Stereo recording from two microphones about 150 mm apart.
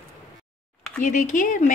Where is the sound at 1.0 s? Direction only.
60° left (ahead or behind).